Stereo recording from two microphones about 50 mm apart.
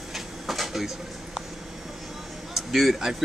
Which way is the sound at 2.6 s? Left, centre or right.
Centre.